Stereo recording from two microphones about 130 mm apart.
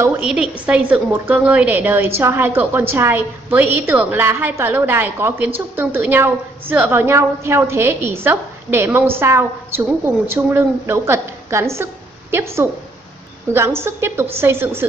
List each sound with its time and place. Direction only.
0.2 s a woman's voice: 5° right (ahead or behind)